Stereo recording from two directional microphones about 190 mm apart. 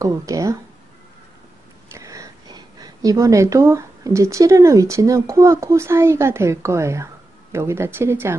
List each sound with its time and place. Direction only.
0.0 s speech: 15° right (ahead or behind)
1.9 s speech: 15° right (ahead or behind)